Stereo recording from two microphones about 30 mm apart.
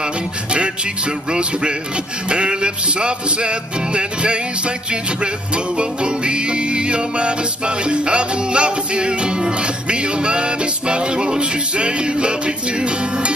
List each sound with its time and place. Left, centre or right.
2.2 s music: right
5.8 s music: right